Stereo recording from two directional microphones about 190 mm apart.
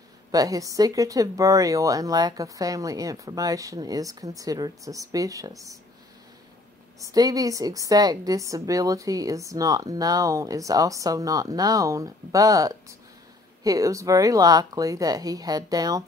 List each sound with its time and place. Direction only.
0.3 s a woman's voice: 20° right (ahead or behind)
7.0 s a woman's voice: 20° right (ahead or behind)